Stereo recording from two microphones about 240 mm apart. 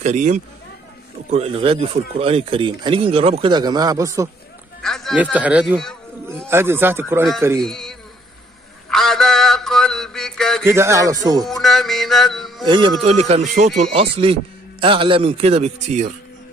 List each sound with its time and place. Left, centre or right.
0.0 s speech: right; by 4.3 s centre
4.8 s a man's voice: centre
7.6 s a man's voice: centre
8.9 s mantra: centre
10.6 s a man's voice: centre
11.4 s music: centre
12.6 s speech: centre